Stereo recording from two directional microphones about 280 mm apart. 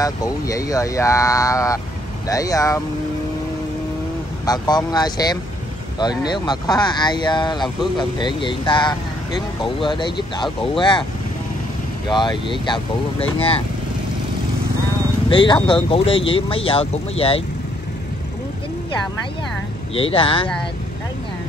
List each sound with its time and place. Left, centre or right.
0.0 s speech: centre
4.5 s speech: centre
12.1 s speech: centre
15.2 s speech: centre
19.9 s speech: centre